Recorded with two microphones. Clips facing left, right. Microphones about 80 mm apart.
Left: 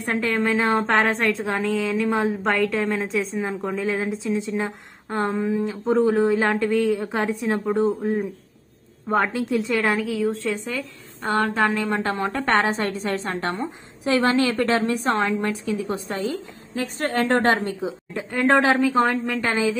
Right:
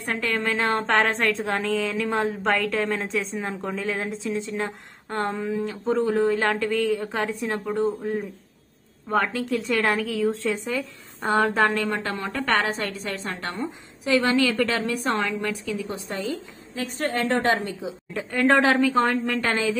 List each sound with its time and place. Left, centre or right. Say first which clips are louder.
0.0 s a woman's voice: left 3 dB; centre
0.4 s a woman's voice: left 4 dB; centre
9.1 s a woman's voice: left 2 dB; left
9.7 s a woman's voice: left 1 dB; centre
11.9 s a woman's voice: left 4 dB; left
18.1 s a woman's voice: right 1 dB; centre
18.5 s a woman's voice: left 1 dB; centre